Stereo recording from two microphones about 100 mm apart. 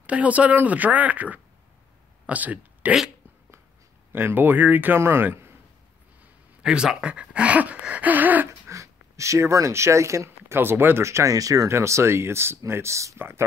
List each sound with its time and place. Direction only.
0.0 s speech: 15° right (ahead or behind)
4.1 s speech: 20° right (ahead or behind)
6.6 s speech: 10° right (ahead or behind)
8.6 s speech: 30° right (ahead or behind)